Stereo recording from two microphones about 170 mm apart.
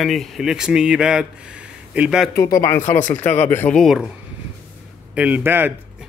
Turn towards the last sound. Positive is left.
turn(degrees=-10)  # may be behind; listen again after turning